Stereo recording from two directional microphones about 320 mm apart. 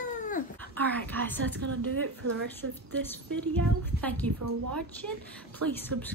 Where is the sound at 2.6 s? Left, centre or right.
Right.